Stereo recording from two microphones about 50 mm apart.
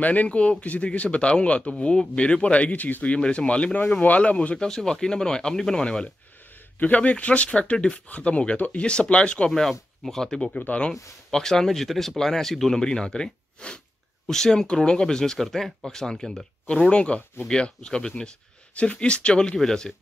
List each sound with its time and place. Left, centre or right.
0.0 s speech: left
4.6 s speech: centre
6.8 s speech: left
9.5 s speech: centre
15.4 s speech: centre
16.9 s speech: left